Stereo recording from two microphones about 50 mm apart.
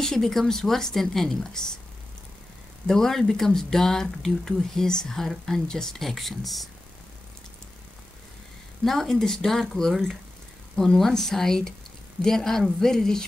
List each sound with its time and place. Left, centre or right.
0.0 s speech: centre
2.9 s speech: centre
8.8 s speech: centre